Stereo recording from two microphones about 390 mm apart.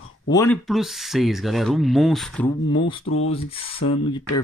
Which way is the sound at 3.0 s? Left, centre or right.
Left.